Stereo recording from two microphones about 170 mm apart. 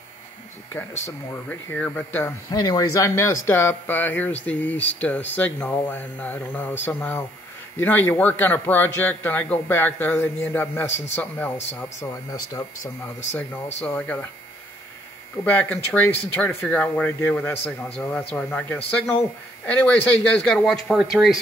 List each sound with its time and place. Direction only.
1.0 s speech: 15° left (ahead or behind)
2.5 s speech: 25° left (ahead or behind)
15.4 s speech: 10° left (ahead or behind)